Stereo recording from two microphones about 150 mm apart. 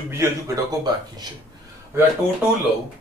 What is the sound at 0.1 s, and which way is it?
Speech, 20° right (ahead or behind).